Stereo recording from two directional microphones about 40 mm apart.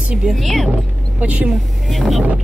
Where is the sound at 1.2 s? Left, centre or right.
Right.